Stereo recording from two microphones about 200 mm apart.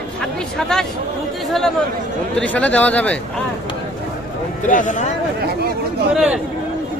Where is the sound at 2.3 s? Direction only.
5° left (ahead or behind).